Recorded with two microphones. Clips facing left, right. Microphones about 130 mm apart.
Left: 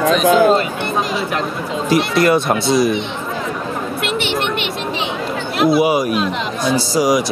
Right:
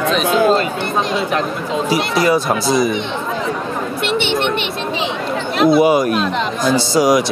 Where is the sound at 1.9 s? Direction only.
Centre (ahead or behind).